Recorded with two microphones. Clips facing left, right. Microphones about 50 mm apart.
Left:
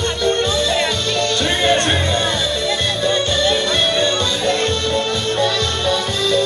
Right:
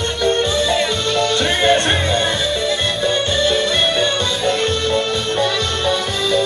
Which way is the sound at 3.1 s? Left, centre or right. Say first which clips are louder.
Even; centre.